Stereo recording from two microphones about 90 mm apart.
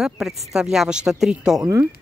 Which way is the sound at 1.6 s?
35° right (ahead or behind).